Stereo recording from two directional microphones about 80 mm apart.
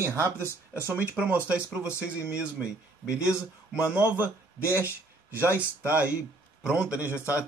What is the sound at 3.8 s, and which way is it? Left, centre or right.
Speech, right.